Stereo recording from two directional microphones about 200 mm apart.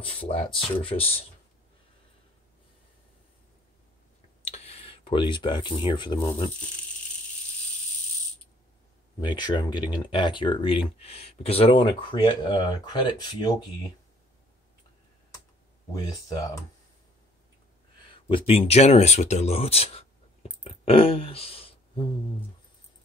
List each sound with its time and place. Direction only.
0.0 s speech: 30° left (ahead or behind)
4.5 s speech: 30° left (ahead or behind)
9.2 s speech: 20° left (ahead or behind)
15.9 s speech: 20° left (ahead or behind)
18.3 s speech: 30° left (ahead or behind)
20.6 s a sound: 30° left (ahead or behind)